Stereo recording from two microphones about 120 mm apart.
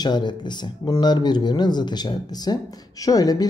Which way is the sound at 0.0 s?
35° left (ahead or behind).